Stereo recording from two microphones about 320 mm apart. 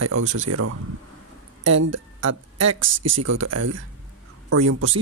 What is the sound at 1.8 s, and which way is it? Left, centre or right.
Speech, right.